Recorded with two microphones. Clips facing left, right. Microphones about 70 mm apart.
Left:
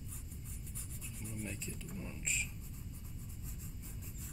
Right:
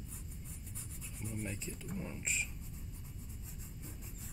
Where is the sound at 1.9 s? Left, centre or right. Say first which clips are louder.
Right 6 dB; right.